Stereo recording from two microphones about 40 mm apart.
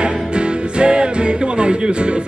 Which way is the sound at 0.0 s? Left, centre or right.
Right.